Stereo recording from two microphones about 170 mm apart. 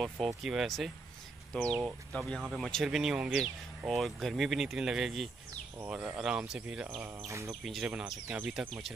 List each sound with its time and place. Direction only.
0.4 s speech: centre (ahead or behind)
1.8 s speech: 5° right (ahead or behind)
7.2 s speech: 15° right (ahead or behind)
7.8 s speech: 5° right (ahead or behind)